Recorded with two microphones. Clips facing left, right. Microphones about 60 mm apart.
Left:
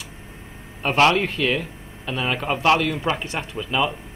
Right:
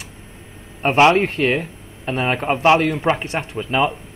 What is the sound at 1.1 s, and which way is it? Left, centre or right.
Speech, right.